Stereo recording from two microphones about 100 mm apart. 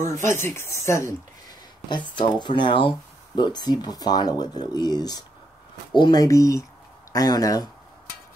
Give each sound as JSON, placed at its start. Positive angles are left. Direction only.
{"t": 0.1, "sound": "speech", "side_deg": 30}
{"t": 1.9, "sound": "speech", "side_deg": 50}
{"t": 6.2, "sound": "speech", "side_deg": 35}